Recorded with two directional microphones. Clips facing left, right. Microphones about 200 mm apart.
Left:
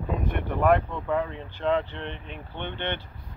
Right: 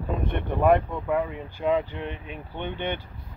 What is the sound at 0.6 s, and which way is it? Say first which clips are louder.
Speech: right 2 dB; 10° right (ahead or behind).